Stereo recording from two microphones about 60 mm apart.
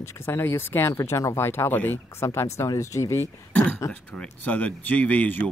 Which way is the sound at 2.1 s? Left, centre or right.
Left.